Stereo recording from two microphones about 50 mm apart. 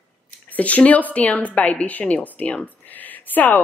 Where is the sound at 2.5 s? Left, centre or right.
Left.